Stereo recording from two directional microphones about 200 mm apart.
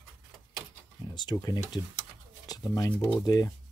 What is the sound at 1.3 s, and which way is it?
Speech, 20° left (ahead or behind).